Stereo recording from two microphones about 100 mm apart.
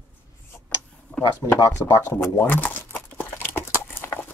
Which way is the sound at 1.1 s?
15° left (ahead or behind).